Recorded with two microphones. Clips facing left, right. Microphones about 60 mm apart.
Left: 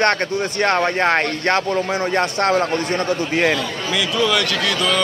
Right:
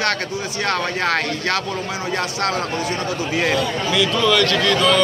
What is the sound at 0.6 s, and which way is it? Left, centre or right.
Speech, left.